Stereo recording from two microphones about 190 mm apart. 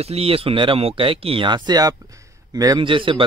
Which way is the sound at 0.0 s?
30° right (ahead or behind).